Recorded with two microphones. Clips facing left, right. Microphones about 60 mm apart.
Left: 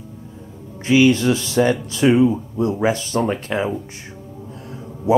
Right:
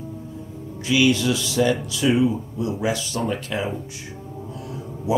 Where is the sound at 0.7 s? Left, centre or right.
Left.